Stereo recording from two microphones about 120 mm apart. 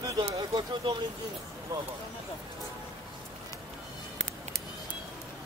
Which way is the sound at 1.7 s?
30° right (ahead or behind).